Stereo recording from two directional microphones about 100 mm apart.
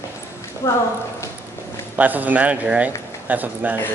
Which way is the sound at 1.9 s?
15° right (ahead or behind).